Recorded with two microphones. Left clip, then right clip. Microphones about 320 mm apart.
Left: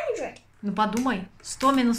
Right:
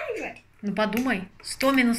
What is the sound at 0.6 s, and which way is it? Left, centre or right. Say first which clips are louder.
Speech: even; centre.